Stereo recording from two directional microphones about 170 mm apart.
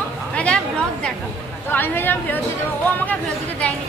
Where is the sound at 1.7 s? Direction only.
10° left (ahead or behind).